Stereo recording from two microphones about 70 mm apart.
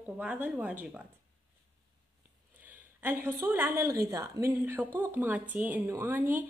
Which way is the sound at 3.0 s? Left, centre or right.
Right.